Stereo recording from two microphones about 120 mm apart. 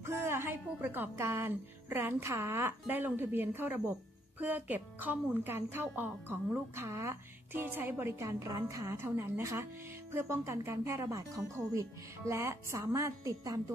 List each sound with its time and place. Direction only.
0.0 s a woman's voice: 20° right (ahead or behind)